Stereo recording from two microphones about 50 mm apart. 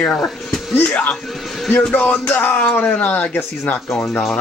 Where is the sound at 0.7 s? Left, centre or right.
Left.